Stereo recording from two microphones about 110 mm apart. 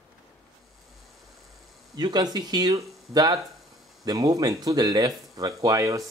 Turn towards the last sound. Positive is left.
turn(degrees=-30)  # may be behind; listen again after turning